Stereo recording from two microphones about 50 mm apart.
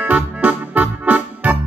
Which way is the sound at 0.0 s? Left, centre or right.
Right.